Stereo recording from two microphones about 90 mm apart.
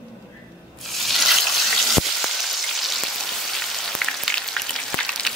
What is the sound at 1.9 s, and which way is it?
Frying, centre (ahead or behind).